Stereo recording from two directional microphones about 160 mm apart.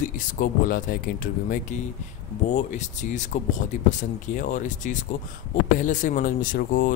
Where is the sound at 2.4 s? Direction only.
50° left (ahead or behind).